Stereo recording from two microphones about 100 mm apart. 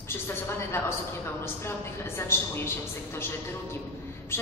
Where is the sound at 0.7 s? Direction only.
25° left (ahead or behind).